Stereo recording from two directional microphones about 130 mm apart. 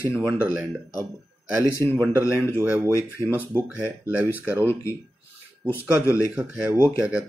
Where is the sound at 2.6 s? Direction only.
20° right (ahead or behind).